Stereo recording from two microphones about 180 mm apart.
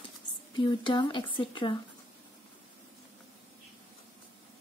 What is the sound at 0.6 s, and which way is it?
Speech, 25° left (ahead or behind).